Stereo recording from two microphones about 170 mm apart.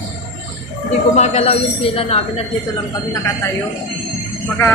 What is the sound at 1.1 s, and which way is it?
Speech, 40° left (ahead or behind).